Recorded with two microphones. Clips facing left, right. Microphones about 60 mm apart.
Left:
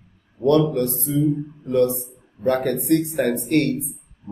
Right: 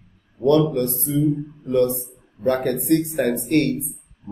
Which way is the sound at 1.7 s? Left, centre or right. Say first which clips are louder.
Even; centre.